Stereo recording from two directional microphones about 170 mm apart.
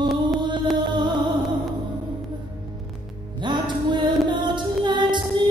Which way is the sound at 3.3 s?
25° right (ahead or behind).